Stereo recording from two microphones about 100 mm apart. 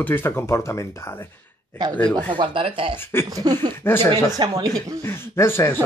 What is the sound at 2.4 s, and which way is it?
Speech, 60° right (ahead or behind).